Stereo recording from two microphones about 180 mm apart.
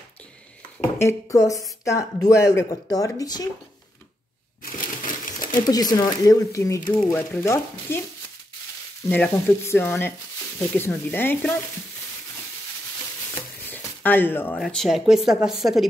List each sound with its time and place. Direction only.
0.9 s speech: 15° left (ahead or behind)
4.7 s a sound: 50° left (ahead or behind)
5.7 s speech: 20° left (ahead or behind)
9.1 s speech: 10° left (ahead or behind)
13.3 s speech: 10° left (ahead or behind)